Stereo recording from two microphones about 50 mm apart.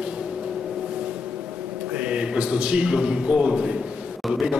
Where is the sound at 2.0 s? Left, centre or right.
Right.